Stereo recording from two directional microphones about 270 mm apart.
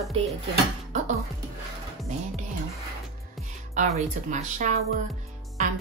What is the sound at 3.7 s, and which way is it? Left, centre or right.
Speech, right.